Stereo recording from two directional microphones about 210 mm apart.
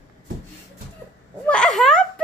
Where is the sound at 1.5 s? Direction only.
Centre (ahead or behind).